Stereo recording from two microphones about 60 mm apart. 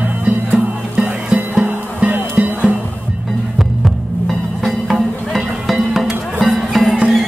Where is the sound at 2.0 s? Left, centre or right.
Right.